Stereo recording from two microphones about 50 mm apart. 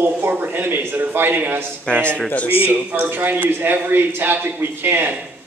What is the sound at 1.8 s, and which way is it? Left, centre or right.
Speech, left.